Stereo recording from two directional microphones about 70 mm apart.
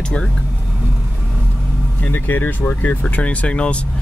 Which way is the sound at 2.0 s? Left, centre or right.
Left.